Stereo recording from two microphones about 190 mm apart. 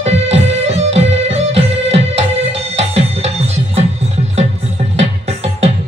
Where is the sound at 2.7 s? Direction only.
35° right (ahead or behind).